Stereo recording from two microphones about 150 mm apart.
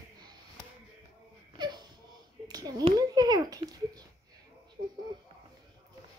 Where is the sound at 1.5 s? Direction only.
30° right (ahead or behind).